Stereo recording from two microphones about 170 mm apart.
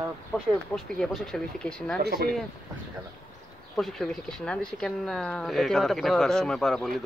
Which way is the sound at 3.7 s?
Centre (ahead or behind).